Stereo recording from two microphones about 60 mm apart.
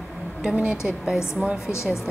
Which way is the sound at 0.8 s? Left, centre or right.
Centre.